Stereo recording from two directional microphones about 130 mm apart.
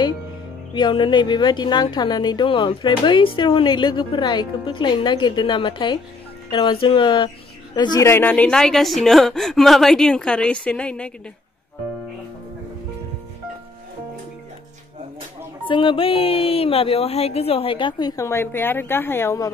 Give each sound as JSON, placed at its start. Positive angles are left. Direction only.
{"t": 0.7, "sound": "a woman's voice", "side_deg": 35}
{"t": 8.0, "sound": "a woman's voice", "side_deg": 15}
{"t": 15.6, "sound": "speech", "side_deg": 40}
{"t": 18.2, "sound": "a woman's voice", "side_deg": 20}